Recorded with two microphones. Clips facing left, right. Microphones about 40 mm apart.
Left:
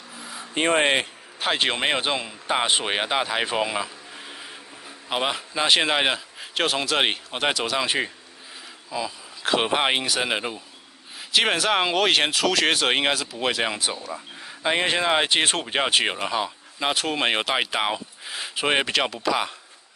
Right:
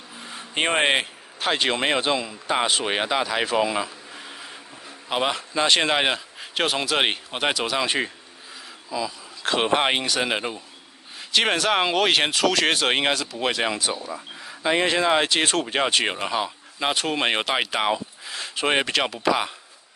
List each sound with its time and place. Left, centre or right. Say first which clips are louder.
0.3 s vehicle: left 1 dB; right
0.7 s a man's voice: even; centre
1.6 s speech: right 1 dB; centre
2.1 s speech: right 2 dB; left
2.7 s speech: even; centre
8.9 s speech: right 1 dB; centre
9.4 s speech: right 1 dB; centre; by 15.6 s left
15.6 s speech: even; centre
16.2 s speech: even; centre